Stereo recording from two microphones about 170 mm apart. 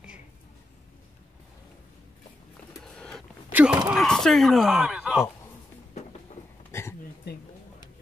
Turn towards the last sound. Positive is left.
turn(degrees=15)  # may be behind; listen again after turning